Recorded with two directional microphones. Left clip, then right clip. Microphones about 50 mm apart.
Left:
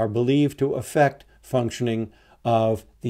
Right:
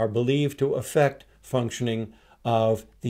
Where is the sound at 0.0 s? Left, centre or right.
Centre.